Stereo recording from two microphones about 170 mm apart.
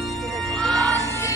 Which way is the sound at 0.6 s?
5° left (ahead or behind).